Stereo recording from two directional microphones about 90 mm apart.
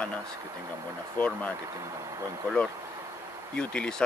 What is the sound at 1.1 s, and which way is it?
Speech, 15° left (ahead or behind).